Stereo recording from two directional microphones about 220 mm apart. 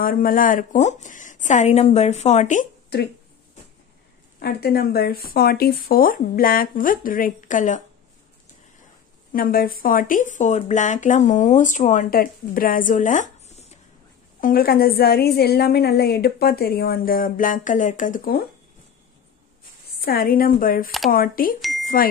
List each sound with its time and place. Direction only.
0.0 s speech: 40° left (ahead or behind)
4.4 s speech: 45° left (ahead or behind)
9.3 s a woman's voice: 40° left (ahead or behind)
20.0 s speech: 45° left (ahead or behind)
21.5 s a sound: centre (ahead or behind)